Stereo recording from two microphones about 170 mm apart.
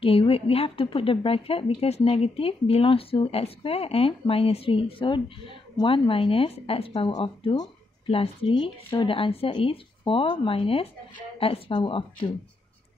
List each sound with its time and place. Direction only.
0.0 s a woman's voice: 30° left (ahead or behind)
8.1 s a woman's voice: 35° left (ahead or behind)